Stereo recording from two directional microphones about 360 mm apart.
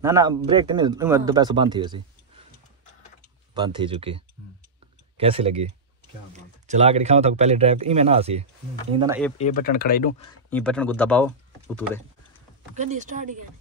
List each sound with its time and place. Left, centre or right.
0.0 s speech: centre
3.5 s speech: centre
6.7 s speech: centre
9.4 s speech: left
10.5 s speech: centre
12.7 s speech: centre